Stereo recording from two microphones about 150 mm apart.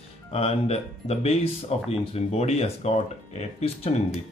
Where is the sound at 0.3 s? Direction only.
40° left (ahead or behind).